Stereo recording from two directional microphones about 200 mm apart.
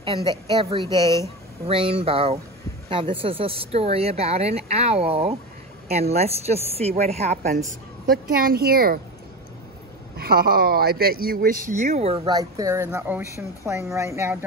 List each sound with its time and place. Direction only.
0.0 s a woman's voice: 25° right (ahead or behind)
0.8 s speech: 15° left (ahead or behind)
1.7 s a woman's voice: 30° right (ahead or behind)
8.3 s speech: 45° right (ahead or behind)
10.1 s speech: 50° right (ahead or behind); by 12.2 s 35° right (ahead or behind)
12.3 s speech: 15° right (ahead or behind)